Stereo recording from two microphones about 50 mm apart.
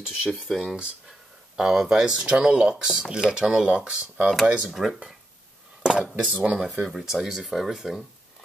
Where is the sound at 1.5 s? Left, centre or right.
Centre.